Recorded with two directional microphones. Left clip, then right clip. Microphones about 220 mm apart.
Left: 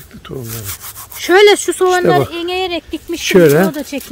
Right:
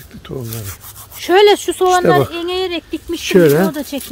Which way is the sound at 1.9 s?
Centre (ahead or behind).